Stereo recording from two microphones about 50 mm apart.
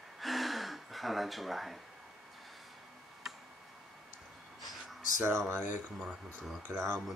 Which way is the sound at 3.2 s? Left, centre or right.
Centre.